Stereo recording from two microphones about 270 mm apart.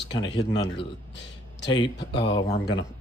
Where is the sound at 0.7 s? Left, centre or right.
Left.